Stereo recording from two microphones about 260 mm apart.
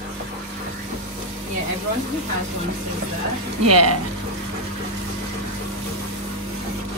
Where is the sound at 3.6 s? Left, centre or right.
Right.